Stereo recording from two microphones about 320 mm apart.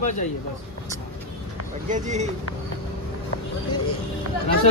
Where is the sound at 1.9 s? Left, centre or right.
Right.